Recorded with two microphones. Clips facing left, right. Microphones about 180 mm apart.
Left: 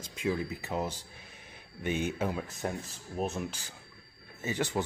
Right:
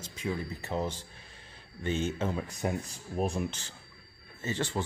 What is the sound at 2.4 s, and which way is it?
Speech, centre (ahead or behind).